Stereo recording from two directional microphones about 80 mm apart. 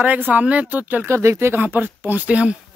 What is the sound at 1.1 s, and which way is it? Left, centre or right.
Speech, right.